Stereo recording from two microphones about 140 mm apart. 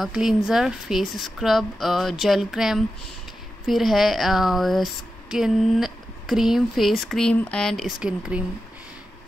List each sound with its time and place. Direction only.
0.0 s speech: 5° right (ahead or behind)